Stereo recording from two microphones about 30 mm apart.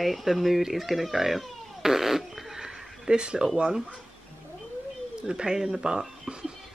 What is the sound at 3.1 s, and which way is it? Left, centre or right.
Speech, right.